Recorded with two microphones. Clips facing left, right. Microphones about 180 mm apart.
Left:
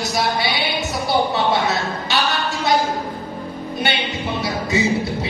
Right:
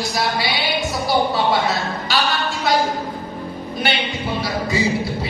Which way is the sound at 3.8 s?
25° left (ahead or behind).